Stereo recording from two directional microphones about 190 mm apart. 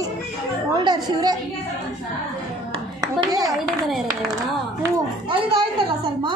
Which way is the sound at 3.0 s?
20° right (ahead or behind).